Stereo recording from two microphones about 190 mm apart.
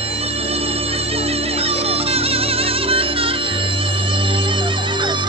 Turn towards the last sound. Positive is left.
turn(degrees=-25)  # may be behind; listen again after turning